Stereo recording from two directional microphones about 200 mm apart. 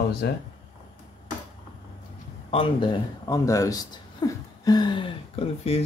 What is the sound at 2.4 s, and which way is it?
A man's voice, 25° left (ahead or behind).